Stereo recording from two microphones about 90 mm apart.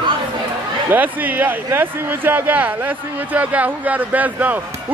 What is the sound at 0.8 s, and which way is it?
Speech, 25° right (ahead or behind).